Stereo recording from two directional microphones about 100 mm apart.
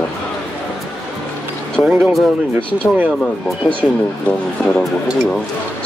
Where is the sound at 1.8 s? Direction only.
15° right (ahead or behind).